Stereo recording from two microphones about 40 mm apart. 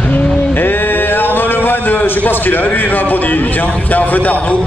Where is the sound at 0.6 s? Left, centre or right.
Left.